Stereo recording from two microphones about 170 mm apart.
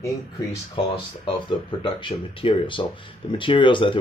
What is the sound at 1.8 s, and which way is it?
Speech, 30° left (ahead or behind).